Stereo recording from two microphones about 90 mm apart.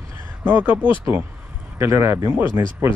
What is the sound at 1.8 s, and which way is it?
Speech, 30° right (ahead or behind).